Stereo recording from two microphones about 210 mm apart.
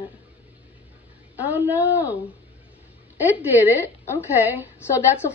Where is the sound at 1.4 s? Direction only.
10° right (ahead or behind).